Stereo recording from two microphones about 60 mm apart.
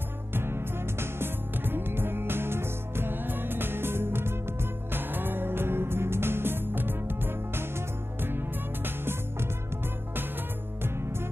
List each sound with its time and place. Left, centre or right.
0.3 s music: right
8.8 s music: right